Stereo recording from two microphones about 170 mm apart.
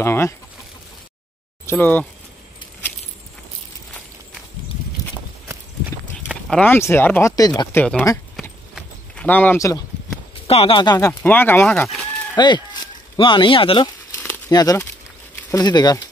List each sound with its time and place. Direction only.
0.0 s speech: 15° left (ahead or behind)
1.7 s speech: 10° left (ahead or behind)
6.5 s speech: 10° left (ahead or behind)
8.4 s clip-clop: 5° left (ahead or behind)
10.4 s speech: 35° left (ahead or behind); by 12.3 s 5° left (ahead or behind)
12.4 s speech: 25° left (ahead or behind)